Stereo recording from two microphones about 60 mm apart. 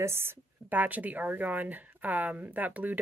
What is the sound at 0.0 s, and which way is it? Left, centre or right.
A woman's voice, right.